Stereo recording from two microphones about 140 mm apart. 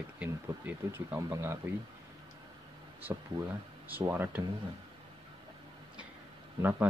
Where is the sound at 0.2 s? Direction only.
15° right (ahead or behind).